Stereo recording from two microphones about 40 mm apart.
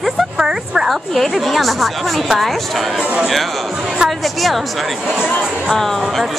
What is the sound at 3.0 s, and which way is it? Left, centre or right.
Speech, right.